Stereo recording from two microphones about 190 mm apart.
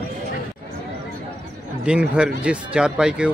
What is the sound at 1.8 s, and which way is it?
Speech, 5° right (ahead or behind).